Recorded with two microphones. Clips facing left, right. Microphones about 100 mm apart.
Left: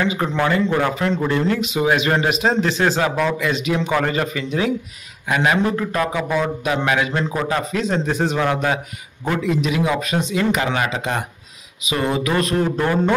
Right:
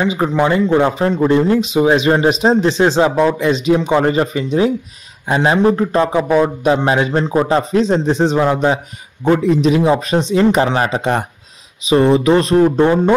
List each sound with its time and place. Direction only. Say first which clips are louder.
0.0 s a man's voice: right 5 dB; 20° right (ahead or behind)